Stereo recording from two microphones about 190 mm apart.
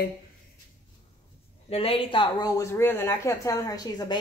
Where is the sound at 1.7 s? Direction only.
30° left (ahead or behind).